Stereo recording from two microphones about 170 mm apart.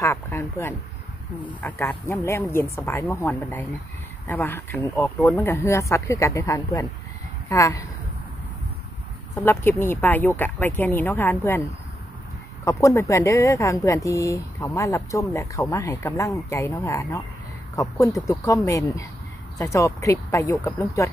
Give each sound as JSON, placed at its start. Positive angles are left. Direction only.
{"t": 0.0, "sound": "speech", "side_deg": 15}
{"t": 9.3, "sound": "speech", "side_deg": 15}
{"t": 12.6, "sound": "speech", "side_deg": 20}